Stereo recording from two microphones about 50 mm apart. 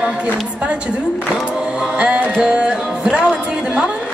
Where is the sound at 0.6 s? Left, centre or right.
Centre.